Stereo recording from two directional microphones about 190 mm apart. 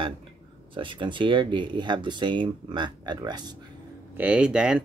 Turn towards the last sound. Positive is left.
turn(degrees=-5)  # may be behind; listen again after turning